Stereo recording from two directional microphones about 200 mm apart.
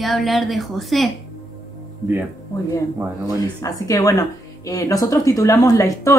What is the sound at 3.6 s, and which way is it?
Speech, 15° left (ahead or behind).